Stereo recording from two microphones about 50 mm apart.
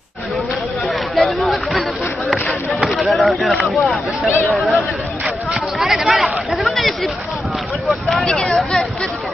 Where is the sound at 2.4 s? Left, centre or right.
Left.